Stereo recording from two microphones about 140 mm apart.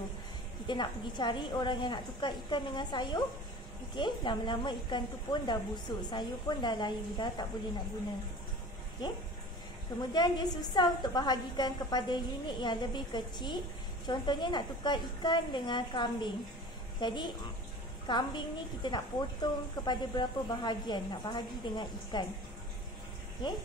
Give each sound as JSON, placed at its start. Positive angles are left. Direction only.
{"t": 0.7, "sound": "a woman's voice", "side_deg": 35}
{"t": 10.1, "sound": "a woman's voice", "side_deg": 30}